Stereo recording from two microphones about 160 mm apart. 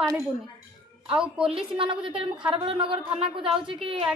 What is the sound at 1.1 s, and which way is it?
Speech, 5° right (ahead or behind).